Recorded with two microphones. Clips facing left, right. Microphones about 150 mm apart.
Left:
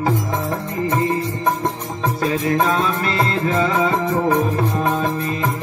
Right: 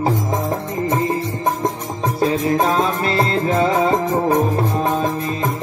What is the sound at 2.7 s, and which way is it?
Music, 30° right (ahead or behind).